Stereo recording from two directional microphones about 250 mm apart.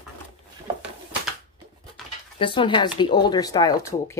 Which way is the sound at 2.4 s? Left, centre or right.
Centre.